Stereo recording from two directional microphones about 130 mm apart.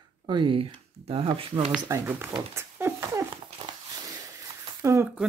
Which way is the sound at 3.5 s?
30° right (ahead or behind).